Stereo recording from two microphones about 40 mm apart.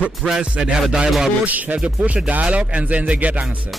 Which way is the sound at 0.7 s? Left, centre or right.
Centre.